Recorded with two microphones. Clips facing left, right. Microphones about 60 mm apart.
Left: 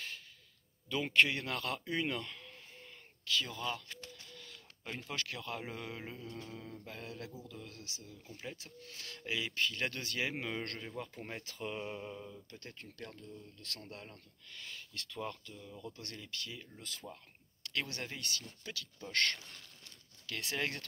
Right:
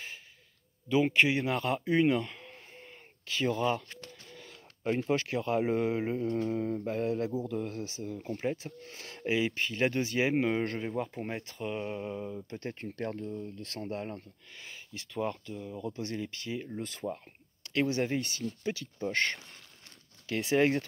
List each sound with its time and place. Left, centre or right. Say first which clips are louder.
0.8 s speech: right 5 dB; centre
3.6 s a sound: right 9 dB; right
5.1 s speech: right 10 dB; centre
6.2 s speech: right 16 dB; right
7.4 s speech: right 15 dB; right
7.7 s speech: right 14 dB; right
11.4 s speech: right 6 dB; centre
12.2 s speech: right 11 dB; right
13.6 s speech: right 11 dB; right
14.5 s speech: right 2 dB; centre
16.5 s speech: right 12 dB; right
17.6 s speech: right 11 dB; right